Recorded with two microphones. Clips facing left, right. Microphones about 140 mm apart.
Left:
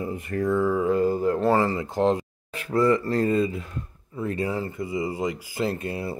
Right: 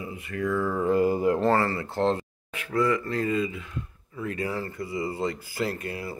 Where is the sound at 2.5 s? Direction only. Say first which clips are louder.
Left 4 dB; 35° left (ahead or behind); by 5.7 s 15° left (ahead or behind).